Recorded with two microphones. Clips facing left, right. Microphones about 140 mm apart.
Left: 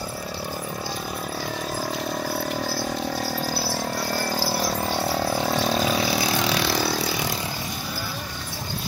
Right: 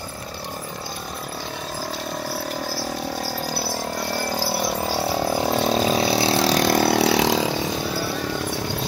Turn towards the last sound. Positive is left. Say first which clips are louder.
# right 9 dB
turn(degrees=-90)